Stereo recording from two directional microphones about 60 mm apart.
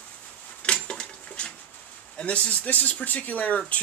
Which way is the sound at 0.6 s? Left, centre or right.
Centre.